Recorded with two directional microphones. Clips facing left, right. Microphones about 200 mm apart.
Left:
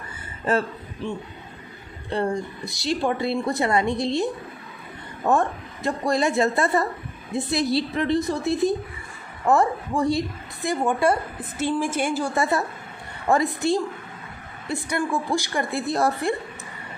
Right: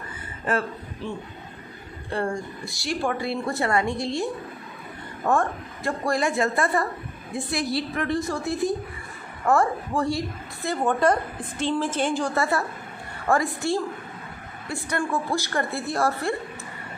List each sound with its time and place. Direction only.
2.0 s a woman's voice: 20° left (ahead or behind)
12.4 s a woman's voice: 20° left (ahead or behind)